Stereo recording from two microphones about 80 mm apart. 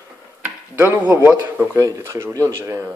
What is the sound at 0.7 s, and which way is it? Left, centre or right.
Speech, right.